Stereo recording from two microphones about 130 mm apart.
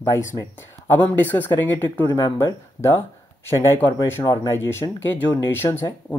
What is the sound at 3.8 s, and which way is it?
Speech, 35° left (ahead or behind).